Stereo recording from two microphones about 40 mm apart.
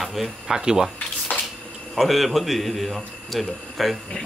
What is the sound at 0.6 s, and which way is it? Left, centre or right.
Speech, centre.